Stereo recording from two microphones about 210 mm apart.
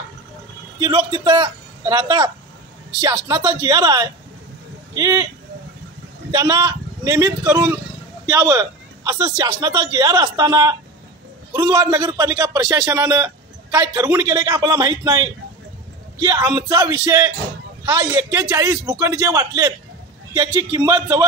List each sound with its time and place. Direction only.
0.7 s speech: 20° right (ahead or behind)
6.3 s a man's voice: 15° right (ahead or behind)